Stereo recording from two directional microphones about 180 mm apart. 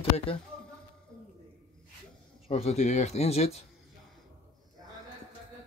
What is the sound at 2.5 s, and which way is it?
Speech, 35° left (ahead or behind).